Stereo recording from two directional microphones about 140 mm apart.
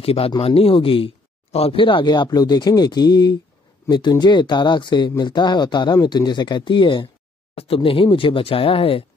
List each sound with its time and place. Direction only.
0.0 s speech: 45° left (ahead or behind)